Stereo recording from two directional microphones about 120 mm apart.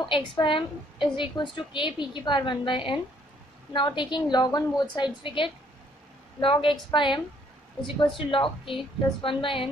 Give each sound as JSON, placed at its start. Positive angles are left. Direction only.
{"t": 0.0, "sound": "a woman's voice", "side_deg": 45}
{"t": 8.3, "sound": "a woman's voice", "side_deg": 45}